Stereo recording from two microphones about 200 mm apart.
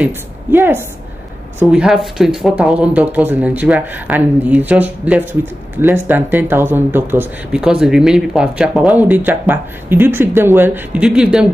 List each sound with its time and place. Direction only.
0.0 s a woman's voice: 10° right (ahead or behind)